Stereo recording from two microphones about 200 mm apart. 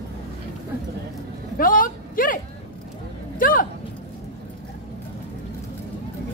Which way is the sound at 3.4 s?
45° left (ahead or behind).